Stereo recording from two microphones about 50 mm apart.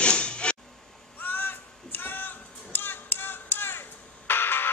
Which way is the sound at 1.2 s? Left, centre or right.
Left.